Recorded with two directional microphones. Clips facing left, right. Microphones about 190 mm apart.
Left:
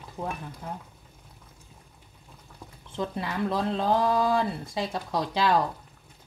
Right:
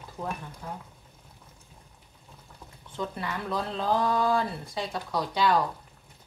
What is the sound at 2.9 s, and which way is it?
Speech, 25° left (ahead or behind).